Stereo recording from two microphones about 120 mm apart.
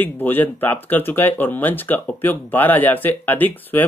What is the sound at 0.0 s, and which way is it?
Speech, 15° left (ahead or behind).